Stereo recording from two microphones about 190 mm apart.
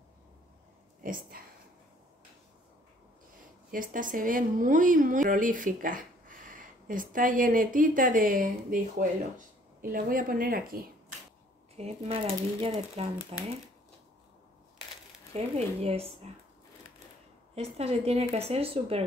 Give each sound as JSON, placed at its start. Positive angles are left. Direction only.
{"t": 1.0, "sound": "speech", "side_deg": -45}
{"t": 3.7, "sound": "speech", "side_deg": -45}
{"t": 11.7, "sound": "speech", "side_deg": -30}
{"t": 15.3, "sound": "speech", "side_deg": -35}
{"t": 17.7, "sound": "speech", "side_deg": -30}